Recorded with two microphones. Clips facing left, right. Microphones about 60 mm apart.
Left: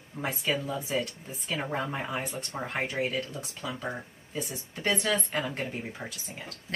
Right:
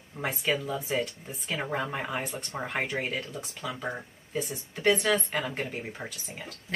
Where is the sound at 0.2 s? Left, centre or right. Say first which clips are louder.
Right 1 dB; right.